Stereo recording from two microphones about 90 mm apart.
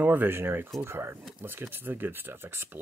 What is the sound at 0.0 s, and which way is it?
Speech, 20° right (ahead or behind).